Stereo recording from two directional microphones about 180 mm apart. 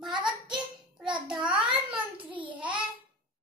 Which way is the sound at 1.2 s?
5° right (ahead or behind).